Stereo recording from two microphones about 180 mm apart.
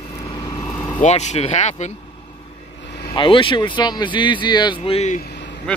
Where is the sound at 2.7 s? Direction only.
70° left (ahead or behind).